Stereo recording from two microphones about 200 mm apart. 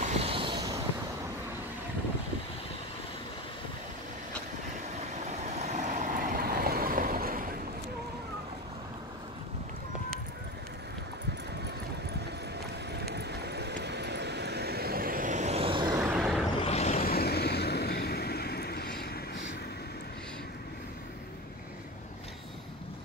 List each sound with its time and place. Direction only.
0.0 s vehicle: 30° right (ahead or behind)
5.2 s vehicle: 35° right (ahead or behind)
6.5 s waves: 50° right (ahead or behind)
13.0 s vehicle: 55° right (ahead or behind); by 16.0 s 25° right (ahead or behind)
16.0 s vehicle: 5° right (ahead or behind)
16.6 s vehicle: 35° left (ahead or behind)
17.0 s vehicle: 50° left (ahead or behind)